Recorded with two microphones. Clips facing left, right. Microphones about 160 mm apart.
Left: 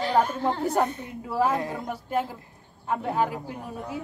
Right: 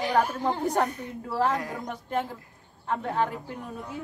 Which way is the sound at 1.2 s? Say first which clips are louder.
Left 2 dB; 10° left (ahead or behind).